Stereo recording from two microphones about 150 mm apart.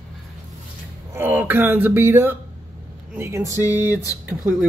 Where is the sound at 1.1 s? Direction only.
15° right (ahead or behind).